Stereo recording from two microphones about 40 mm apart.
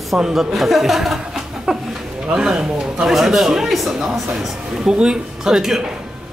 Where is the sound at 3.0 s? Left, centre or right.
Centre.